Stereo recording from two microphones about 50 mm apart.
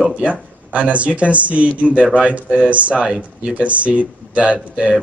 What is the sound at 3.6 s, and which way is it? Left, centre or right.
Speech, right.